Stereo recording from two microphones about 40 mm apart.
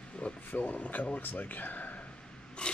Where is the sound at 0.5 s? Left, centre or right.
Left.